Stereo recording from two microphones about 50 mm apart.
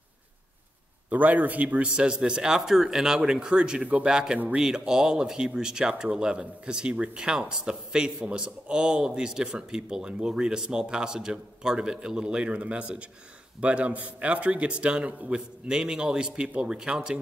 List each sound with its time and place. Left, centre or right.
1.1 s speech: right; by 3.8 s centre
3.8 s a man's voice: right
4.1 s a man's voice: centre
15.3 s speech: centre